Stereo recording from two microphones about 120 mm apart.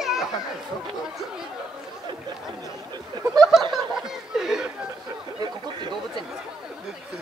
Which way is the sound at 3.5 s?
5° right (ahead or behind).